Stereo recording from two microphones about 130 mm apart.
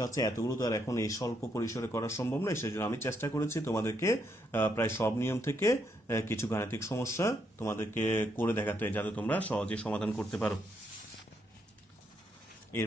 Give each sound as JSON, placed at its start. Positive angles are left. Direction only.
{"t": 0.0, "sound": "speech", "side_deg": 25}